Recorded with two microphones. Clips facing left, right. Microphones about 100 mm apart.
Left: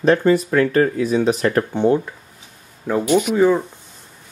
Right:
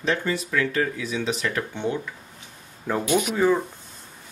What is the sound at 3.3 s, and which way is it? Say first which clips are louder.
Speech: left 5 dB; 15° left (ahead or behind).